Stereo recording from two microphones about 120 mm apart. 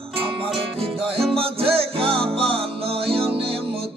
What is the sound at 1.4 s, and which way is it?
Music, 50° right (ahead or behind).